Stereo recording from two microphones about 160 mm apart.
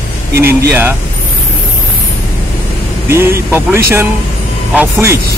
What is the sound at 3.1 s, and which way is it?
Speech, 15° right (ahead or behind).